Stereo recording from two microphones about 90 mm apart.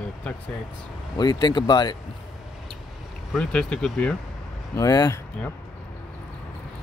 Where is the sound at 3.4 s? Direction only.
10° left (ahead or behind).